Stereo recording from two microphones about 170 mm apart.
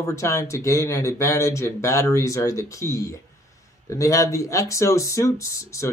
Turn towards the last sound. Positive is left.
turn(degrees=20)  # may be behind; listen again after turning